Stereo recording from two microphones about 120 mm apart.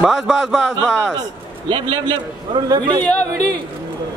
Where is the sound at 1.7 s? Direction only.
40° right (ahead or behind).